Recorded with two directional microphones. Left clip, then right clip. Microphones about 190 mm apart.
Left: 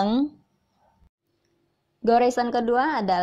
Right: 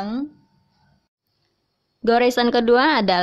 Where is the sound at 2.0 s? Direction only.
15° right (ahead or behind).